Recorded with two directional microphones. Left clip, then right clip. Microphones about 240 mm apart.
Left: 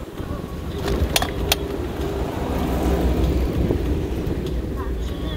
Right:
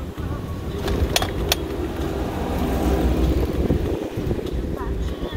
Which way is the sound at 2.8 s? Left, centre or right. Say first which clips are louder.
Right 1 dB; right.